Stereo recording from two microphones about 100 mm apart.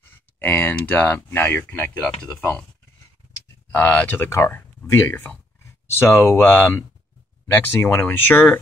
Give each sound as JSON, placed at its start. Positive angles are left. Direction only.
{"t": 0.0, "sound": "speech", "side_deg": 20}
{"t": 3.7, "sound": "speech", "side_deg": 15}